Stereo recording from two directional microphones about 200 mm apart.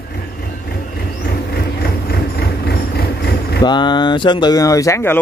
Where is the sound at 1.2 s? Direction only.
50° left (ahead or behind).